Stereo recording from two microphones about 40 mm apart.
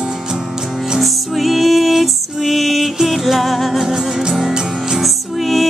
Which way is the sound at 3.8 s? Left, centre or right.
Centre.